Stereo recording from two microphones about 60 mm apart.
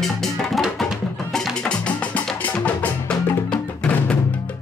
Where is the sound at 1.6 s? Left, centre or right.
Left.